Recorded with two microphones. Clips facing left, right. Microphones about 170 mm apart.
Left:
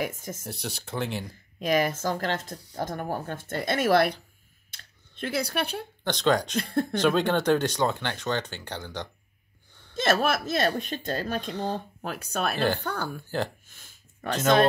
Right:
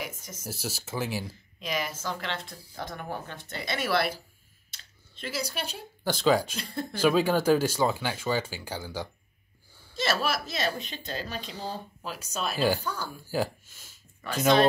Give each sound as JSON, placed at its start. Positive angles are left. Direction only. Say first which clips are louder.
{"t": 0.4, "sound": "speech", "louder": "even", "side_deg": -5}
{"t": 1.6, "sound": "speech", "louder": "left 8 dB", "side_deg": 50}
{"t": 4.6, "sound": "a sound", "louder": "left 2 dB", "side_deg": 55}
{"t": 6.0, "sound": "speech", "louder": "even", "side_deg": -5}
{"t": 6.5, "sound": "speech", "louder": "left 8 dB", "side_deg": 55}
{"t": 7.0, "sound": "speech", "louder": "right 2 dB", "side_deg": -5}
{"t": 9.9, "sound": "speech", "louder": "left 4 dB", "side_deg": 50}
{"t": 11.5, "sound": "speech", "louder": "left 4 dB", "side_deg": -10}
{"t": 12.0, "sound": "speech", "louder": "left 3 dB", "side_deg": 55}
{"t": 13.8, "sound": "a sound", "louder": "left 5 dB", "side_deg": 50}